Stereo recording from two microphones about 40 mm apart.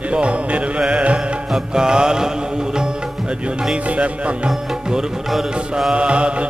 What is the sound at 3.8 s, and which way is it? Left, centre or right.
Music, right.